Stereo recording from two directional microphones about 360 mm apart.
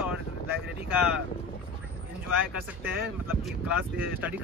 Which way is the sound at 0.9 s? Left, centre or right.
Centre.